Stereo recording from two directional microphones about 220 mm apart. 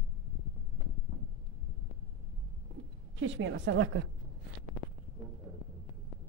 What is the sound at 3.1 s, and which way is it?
Speech, 60° right (ahead or behind).